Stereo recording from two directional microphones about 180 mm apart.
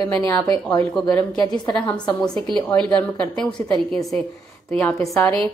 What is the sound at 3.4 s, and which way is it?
A woman's voice, 5° left (ahead or behind).